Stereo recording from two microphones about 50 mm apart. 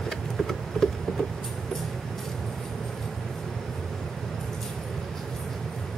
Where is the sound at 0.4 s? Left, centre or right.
Centre.